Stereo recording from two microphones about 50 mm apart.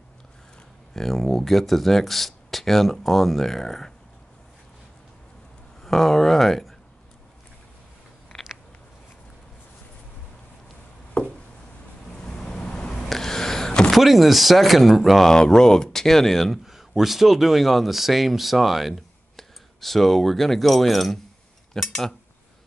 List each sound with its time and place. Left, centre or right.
0.9 s speech: centre
5.8 s speech: centre
12.2 s a sound: centre
13.1 s a sound: centre
13.9 s speech: centre
15.3 s speech: centre
16.6 s speech: centre